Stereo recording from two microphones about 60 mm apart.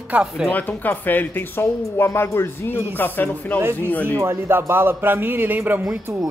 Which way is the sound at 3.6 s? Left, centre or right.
Right.